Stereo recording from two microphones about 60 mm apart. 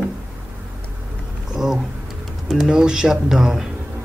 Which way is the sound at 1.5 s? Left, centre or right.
Centre.